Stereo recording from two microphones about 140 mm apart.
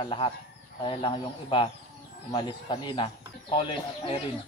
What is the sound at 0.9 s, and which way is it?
Speech, 35° left (ahead or behind).